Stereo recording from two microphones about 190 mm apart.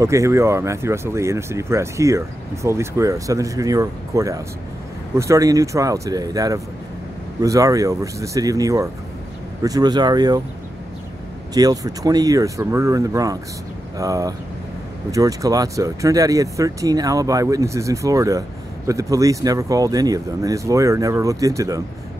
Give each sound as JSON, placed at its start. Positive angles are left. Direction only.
{"t": 0.0, "sound": "speech", "side_deg": -15}
{"t": 11.5, "sound": "speech", "side_deg": -20}